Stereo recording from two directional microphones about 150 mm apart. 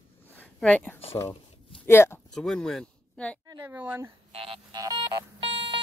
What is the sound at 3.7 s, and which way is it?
Speech, 15° right (ahead or behind).